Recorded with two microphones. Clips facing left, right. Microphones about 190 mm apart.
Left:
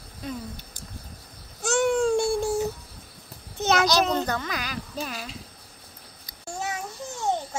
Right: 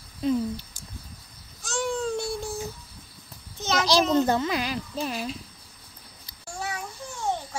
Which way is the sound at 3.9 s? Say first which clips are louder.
Right 3 dB; 25° right (ahead or behind).